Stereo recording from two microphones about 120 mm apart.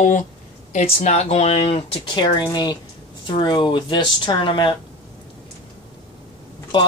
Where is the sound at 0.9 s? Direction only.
60° left (ahead or behind); by 4.8 s 45° left (ahead or behind).